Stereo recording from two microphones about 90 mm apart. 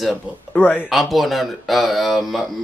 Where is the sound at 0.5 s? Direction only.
15° left (ahead or behind).